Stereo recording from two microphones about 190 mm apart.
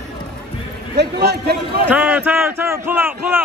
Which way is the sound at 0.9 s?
60° right (ahead or behind).